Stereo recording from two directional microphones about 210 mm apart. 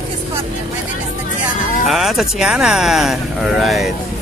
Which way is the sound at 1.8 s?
Centre (ahead or behind).